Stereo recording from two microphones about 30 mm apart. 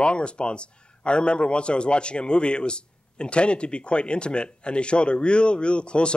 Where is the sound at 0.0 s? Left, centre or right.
Left.